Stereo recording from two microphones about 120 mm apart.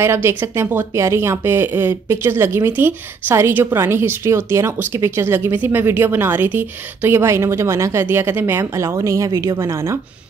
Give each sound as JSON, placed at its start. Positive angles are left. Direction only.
{"t": 0.0, "sound": "speech", "side_deg": -20}